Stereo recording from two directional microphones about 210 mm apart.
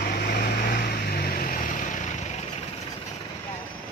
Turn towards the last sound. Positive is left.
turn(degrees=35)  # may be behind; listen again after turning